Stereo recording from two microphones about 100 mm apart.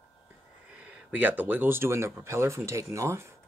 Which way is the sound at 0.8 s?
15° right (ahead or behind).